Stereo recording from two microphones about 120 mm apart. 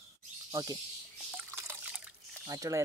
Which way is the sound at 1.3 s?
20° right (ahead or behind).